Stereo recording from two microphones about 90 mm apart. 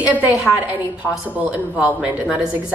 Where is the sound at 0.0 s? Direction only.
15° right (ahead or behind).